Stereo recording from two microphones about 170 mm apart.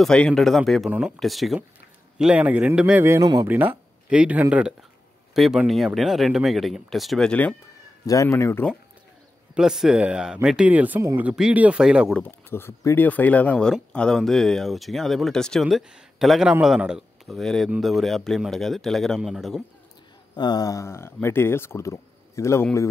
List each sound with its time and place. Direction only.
0.0 s a man's voice: 5° left (ahead or behind)
8.1 s speech: 15° left (ahead or behind)
9.6 s speech: 5° right (ahead or behind)
12.2 s speech: 15° left (ahead or behind)
20.3 s speech: 25° left (ahead or behind)